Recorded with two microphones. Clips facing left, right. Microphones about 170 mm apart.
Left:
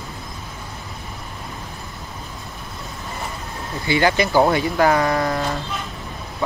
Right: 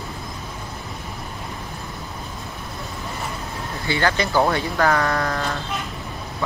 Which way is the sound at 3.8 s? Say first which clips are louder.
Left 4 dB; 15° left (ahead or behind).